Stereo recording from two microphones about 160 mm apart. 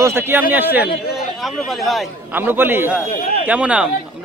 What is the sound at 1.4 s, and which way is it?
Speech, centre (ahead or behind).